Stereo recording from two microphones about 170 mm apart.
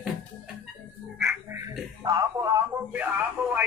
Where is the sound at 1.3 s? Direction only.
15° right (ahead or behind).